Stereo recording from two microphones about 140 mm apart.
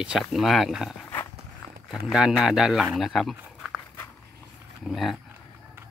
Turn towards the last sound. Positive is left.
turn(degrees=0)  # may be behind; listen again after turning